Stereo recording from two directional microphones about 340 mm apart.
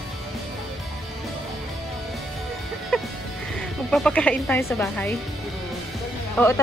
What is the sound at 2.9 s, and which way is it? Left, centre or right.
Music, centre.